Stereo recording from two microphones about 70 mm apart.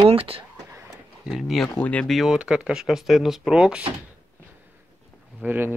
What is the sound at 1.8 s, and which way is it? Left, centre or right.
Speech, centre.